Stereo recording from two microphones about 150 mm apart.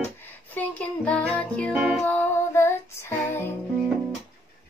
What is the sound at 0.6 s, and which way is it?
Music, 10° left (ahead or behind).